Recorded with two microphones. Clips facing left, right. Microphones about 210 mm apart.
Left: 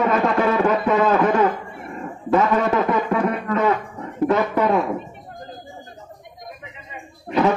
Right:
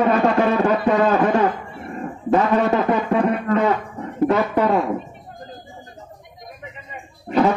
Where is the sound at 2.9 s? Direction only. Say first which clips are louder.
Right 2 dB; 30° right (ahead or behind).